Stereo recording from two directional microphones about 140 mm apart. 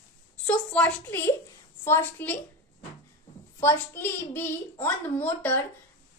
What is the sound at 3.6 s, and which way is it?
Speech, 15° left (ahead or behind).